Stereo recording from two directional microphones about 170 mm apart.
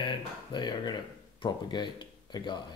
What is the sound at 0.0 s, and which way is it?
Speech, 30° left (ahead or behind).